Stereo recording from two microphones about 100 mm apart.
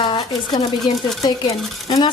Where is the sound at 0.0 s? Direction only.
55° left (ahead or behind).